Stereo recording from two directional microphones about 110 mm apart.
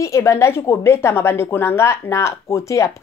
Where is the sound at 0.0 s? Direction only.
25° left (ahead or behind).